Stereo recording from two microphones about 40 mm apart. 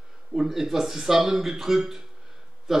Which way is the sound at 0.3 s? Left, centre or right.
Centre.